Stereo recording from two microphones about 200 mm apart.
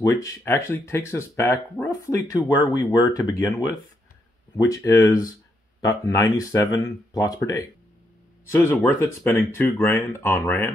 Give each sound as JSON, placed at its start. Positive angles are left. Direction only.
{"t": 0.1, "sound": "speech", "side_deg": 15}
{"t": 4.6, "sound": "speech", "side_deg": 15}